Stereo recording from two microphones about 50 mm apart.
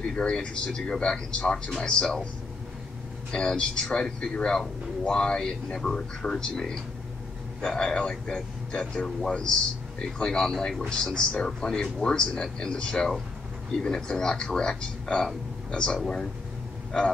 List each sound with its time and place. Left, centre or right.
0.0 s speech: centre
3.3 s speech: centre